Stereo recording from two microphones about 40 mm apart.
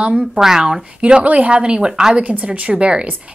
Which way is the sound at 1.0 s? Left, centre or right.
Right.